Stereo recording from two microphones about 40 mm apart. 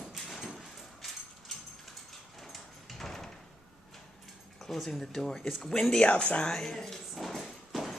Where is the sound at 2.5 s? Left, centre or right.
Centre.